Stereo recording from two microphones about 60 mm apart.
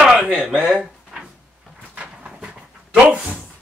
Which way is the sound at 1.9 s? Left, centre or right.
Centre.